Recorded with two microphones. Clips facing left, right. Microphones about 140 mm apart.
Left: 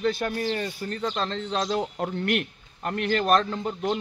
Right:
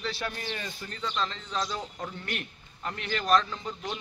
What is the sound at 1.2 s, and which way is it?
A man's voice, 60° left (ahead or behind).